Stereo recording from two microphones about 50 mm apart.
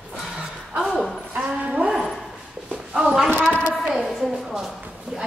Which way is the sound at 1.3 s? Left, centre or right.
Right.